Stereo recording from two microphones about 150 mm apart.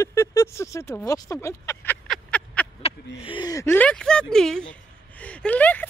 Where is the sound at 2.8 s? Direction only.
35° left (ahead or behind).